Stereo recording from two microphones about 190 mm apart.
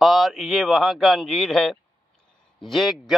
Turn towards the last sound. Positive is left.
turn(degrees=0)  # may be behind; listen again after turning